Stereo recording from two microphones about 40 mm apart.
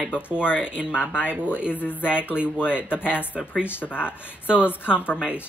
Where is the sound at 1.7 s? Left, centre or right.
Left.